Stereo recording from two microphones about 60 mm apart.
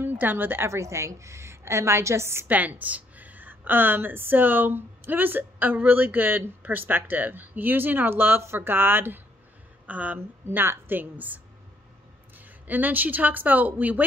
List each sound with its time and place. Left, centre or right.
0.0 s a woman's voice: right
0.7 s a woman's voice: right
2.4 s speech: right
9.8 s speech: right
10.1 s speech: right